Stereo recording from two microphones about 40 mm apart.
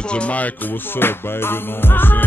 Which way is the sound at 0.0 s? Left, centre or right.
Left.